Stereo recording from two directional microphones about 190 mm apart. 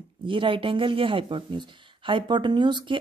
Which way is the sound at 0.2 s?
25° right (ahead or behind).